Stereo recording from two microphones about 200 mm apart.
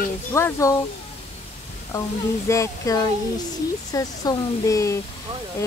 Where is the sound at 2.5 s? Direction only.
15° left (ahead or behind).